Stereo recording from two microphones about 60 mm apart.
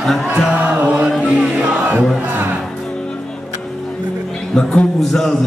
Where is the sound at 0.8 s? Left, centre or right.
Right.